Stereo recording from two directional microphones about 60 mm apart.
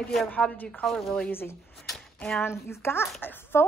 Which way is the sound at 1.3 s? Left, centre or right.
Left.